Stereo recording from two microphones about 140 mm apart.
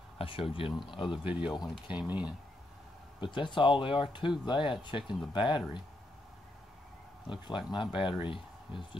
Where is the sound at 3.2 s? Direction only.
35° left (ahead or behind).